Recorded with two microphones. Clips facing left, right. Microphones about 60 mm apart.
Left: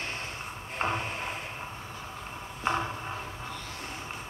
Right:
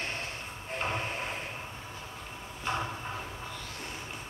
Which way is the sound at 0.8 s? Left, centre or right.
Left.